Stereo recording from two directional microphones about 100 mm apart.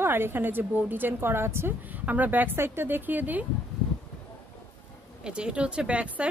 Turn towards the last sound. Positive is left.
turn(degrees=-10)  # may be behind; listen again after turning